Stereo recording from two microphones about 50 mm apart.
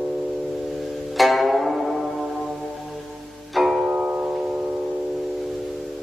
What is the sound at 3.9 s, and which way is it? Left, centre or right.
Music, right.